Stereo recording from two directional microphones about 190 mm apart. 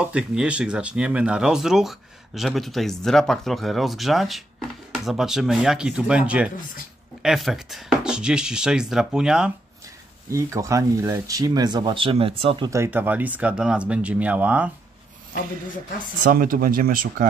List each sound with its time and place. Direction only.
0.0 s speech: 5° right (ahead or behind)
10.3 s speech: 15° right (ahead or behind)
12.7 s speech: 10° right (ahead or behind)
16.3 s speech: 50° right (ahead or behind)